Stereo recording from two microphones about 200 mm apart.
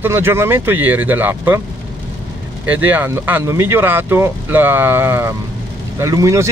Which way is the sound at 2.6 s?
10° right (ahead or behind).